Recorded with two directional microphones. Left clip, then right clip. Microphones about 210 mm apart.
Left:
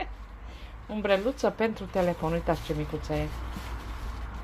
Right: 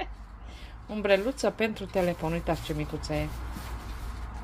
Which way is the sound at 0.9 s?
Centre (ahead or behind).